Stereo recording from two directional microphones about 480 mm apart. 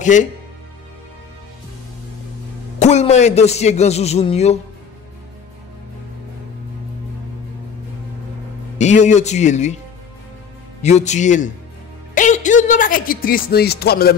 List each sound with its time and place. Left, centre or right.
0.0 s speech: centre
2.8 s a man's voice: centre
8.7 s a man's voice: centre
10.8 s a man's voice: centre